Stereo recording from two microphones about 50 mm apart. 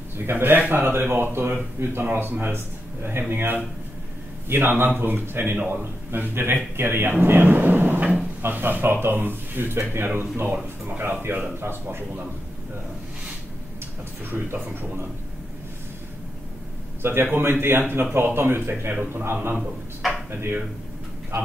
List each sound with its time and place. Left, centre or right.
0.3 s speech: right
8.0 s drawer open or close: right
8.4 s speech: right
10.4 s speech: right
11.3 s speech: right
17.0 s speech: right
20.0 s speech: centre